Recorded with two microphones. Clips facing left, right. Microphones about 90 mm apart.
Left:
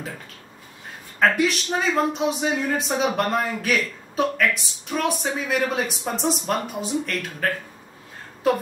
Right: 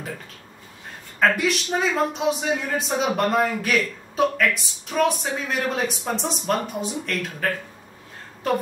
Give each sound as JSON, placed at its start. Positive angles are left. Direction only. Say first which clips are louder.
{"t": 1.2, "sound": "a man's voice", "louder": "left 1 dB", "side_deg": 0}